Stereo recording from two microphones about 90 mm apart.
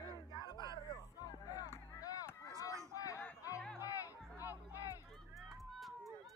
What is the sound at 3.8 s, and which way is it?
Music, 40° left (ahead or behind).